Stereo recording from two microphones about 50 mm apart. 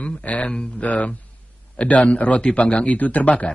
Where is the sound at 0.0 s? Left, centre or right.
Left.